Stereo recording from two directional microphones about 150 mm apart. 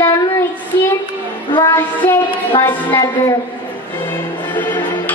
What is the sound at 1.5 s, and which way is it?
Child singing, 25° left (ahead or behind).